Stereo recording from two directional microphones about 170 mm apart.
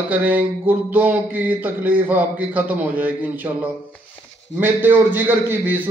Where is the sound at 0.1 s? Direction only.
10° right (ahead or behind).